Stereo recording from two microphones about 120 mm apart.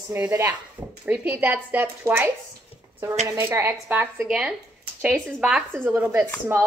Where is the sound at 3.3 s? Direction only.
20° right (ahead or behind).